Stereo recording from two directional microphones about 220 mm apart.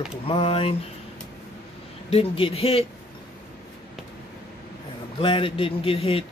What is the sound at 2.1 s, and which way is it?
Speech, 25° left (ahead or behind).